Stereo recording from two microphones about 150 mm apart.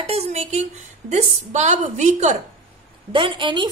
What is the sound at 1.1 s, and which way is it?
A woman's voice, 50° right (ahead or behind).